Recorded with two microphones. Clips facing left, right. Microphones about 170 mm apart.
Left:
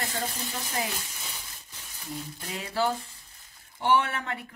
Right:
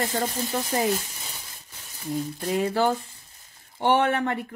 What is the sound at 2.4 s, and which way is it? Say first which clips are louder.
Speech: right 6 dB; 50° right (ahead or behind).